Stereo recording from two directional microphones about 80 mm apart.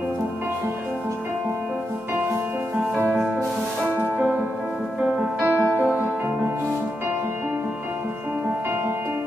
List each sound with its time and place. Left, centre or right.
5.2 s music: right